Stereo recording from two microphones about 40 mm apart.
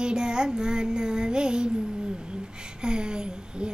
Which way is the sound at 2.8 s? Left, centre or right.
Right.